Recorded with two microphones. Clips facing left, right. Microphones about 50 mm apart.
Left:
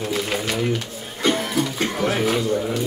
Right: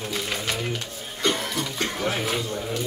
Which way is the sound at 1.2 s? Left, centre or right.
Centre.